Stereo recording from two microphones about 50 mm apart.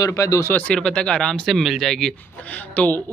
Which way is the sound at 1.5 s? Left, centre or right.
Centre.